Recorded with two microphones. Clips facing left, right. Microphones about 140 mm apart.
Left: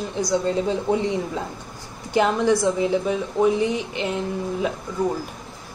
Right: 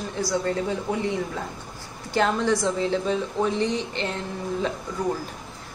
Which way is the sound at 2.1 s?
15° left (ahead or behind).